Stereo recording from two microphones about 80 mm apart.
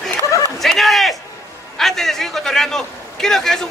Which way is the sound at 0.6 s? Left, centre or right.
Centre.